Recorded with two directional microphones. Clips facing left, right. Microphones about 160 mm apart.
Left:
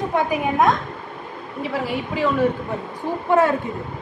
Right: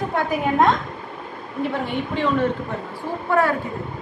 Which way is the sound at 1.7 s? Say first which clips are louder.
Left 4 dB; 5° left (ahead or behind).